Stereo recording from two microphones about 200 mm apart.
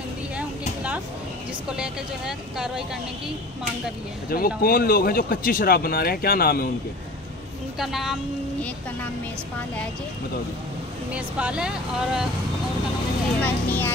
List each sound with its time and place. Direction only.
0.4 s a sound: 5° right (ahead or behind)
1.8 s speech: 5° right (ahead or behind)
4.3 s speech: 45° left (ahead or behind)
7.8 s speech: centre (ahead or behind)
11.1 s speech: 5° right (ahead or behind)
13.4 s speech: 10° left (ahead or behind)